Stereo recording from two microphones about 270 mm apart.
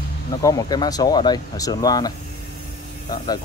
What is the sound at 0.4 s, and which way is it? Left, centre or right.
Speech, centre.